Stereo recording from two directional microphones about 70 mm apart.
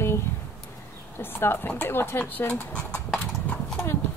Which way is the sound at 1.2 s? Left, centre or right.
Left.